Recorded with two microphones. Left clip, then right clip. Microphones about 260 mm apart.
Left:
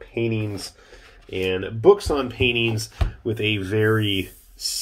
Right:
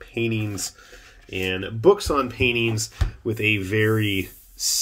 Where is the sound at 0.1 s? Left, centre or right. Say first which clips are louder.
Left 1 dB; centre.